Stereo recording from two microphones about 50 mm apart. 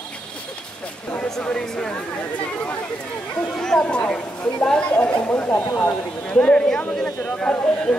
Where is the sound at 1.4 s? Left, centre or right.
Centre.